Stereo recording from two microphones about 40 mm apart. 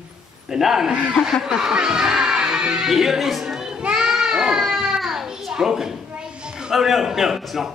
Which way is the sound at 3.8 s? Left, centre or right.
Right.